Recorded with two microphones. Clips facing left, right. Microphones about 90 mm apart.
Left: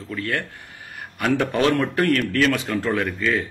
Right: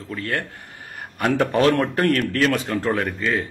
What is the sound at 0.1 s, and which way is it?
A man's voice, 30° right (ahead or behind).